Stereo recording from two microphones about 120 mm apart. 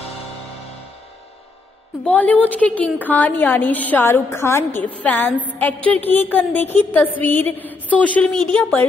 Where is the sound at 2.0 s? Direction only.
10° left (ahead or behind).